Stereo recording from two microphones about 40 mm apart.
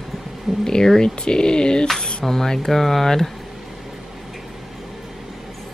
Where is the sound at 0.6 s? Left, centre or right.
Centre.